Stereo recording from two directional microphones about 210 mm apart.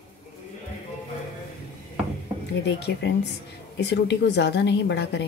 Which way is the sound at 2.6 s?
55° left (ahead or behind).